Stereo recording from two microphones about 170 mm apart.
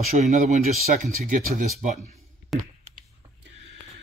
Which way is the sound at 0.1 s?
40° right (ahead or behind).